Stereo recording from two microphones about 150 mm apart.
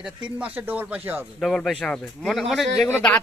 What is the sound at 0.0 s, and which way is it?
Speech, 10° right (ahead or behind).